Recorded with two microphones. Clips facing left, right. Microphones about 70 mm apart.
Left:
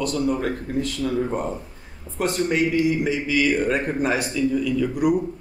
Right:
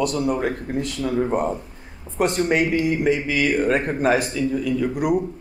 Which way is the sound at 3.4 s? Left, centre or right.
Centre.